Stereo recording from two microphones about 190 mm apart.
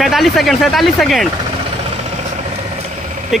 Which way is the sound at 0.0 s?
Centre (ahead or behind).